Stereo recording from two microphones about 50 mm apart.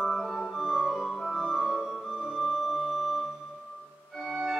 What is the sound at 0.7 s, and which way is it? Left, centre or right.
Music, centre.